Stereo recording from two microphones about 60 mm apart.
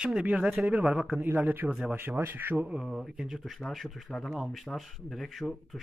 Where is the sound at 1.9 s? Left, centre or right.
Right.